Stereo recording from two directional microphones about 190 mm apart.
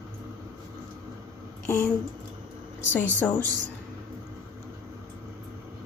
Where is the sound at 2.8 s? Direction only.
10° left (ahead or behind).